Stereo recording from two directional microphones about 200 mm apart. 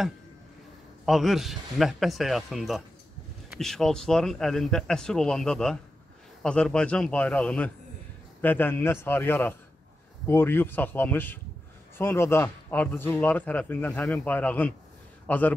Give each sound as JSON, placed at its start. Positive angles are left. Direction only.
{"t": 1.0, "sound": "a man's voice", "side_deg": 0}